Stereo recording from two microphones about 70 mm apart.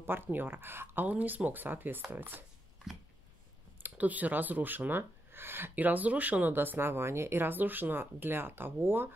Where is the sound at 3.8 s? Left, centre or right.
Right.